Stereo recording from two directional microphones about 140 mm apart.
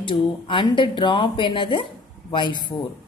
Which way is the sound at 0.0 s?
35° left (ahead or behind).